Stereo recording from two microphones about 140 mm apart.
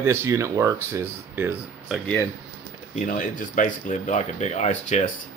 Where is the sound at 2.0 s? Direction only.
15° left (ahead or behind).